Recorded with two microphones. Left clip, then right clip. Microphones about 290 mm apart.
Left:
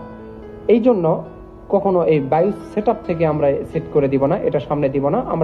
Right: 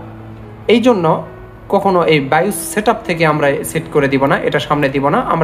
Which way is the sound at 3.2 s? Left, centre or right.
Right.